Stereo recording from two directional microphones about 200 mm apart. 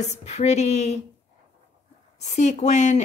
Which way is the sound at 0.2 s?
35° left (ahead or behind).